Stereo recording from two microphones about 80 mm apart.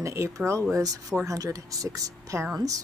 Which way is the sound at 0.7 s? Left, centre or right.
Right.